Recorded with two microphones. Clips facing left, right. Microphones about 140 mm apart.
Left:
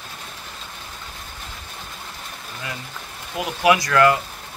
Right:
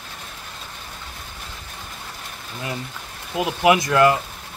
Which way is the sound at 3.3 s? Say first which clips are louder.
Right 1 dB; 20° right (ahead or behind).